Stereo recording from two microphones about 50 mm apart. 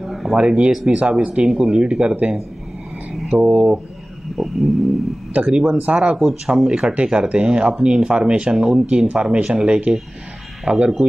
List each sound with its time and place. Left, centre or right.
0.0 s a sound: centre
0.4 s speech: centre
3.1 s speech: centre
4.4 s a sound: centre
5.3 s speech: right
6.1 s speech: centre
10.7 s speech: right